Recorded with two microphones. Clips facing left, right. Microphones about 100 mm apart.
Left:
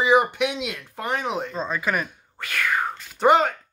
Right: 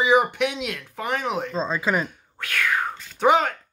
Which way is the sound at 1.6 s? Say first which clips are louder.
Right 4 dB; 20° right (ahead or behind).